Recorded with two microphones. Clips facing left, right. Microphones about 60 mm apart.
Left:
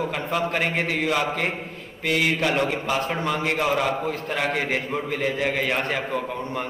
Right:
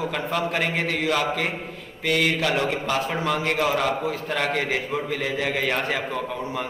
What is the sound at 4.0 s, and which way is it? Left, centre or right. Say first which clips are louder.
Speech: even; centre.